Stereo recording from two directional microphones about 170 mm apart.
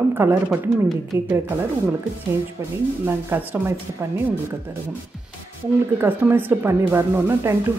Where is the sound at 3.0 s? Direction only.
10° right (ahead or behind).